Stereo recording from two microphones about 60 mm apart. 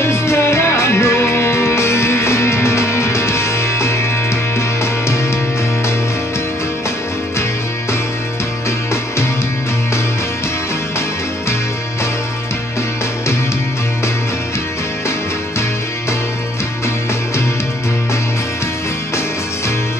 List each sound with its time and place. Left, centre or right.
0.0 s music: left